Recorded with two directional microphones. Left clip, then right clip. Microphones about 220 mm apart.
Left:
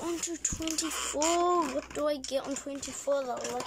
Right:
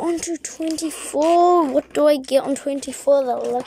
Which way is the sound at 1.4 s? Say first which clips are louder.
Right 12 dB; 35° right (ahead or behind).